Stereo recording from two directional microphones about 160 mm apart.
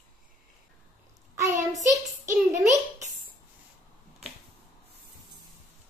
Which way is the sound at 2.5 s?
45° right (ahead or behind).